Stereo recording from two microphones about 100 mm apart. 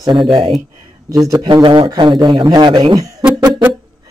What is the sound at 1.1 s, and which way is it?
Speech, 35° right (ahead or behind).